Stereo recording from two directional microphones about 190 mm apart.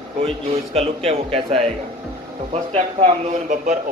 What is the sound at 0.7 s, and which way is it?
A man's voice, 30° right (ahead or behind).